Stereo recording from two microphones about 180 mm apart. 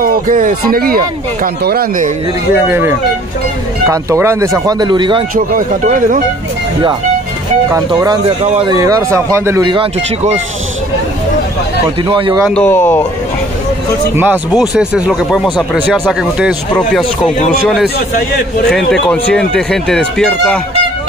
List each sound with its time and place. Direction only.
0.0 s speech: 50° right (ahead or behind)
2.5 s speech: 10° right (ahead or behind)
5.9 s speech: 45° right (ahead or behind)
7.7 s speech: 20° right (ahead or behind)
8.4 s speech: 35° right (ahead or behind)
8.7 s speech: 20° right (ahead or behind)
12.1 s speech: 30° right (ahead or behind)
12.6 s speech: 10° left (ahead or behind)
14.1 s speech: 10° right (ahead or behind)
17.6 s speech: centre (ahead or behind)